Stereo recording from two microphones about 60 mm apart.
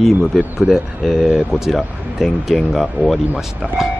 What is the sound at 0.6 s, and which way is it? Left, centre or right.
Speech, centre.